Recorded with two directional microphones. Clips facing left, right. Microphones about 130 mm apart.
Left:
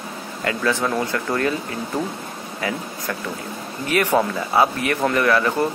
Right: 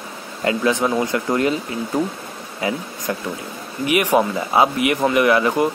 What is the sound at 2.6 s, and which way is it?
Speech, 20° right (ahead or behind).